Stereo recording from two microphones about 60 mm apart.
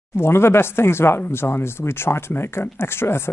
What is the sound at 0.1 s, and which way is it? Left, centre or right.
Speech, left.